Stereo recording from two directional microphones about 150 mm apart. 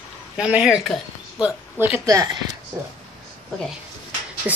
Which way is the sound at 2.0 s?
25° right (ahead or behind).